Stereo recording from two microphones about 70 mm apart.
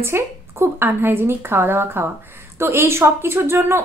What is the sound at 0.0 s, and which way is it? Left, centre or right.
Speech, right.